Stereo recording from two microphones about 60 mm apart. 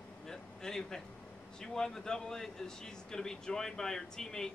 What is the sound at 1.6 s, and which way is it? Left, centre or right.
Speech, centre.